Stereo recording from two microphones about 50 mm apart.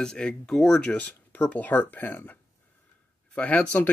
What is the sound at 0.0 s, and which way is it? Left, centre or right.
Speech, centre.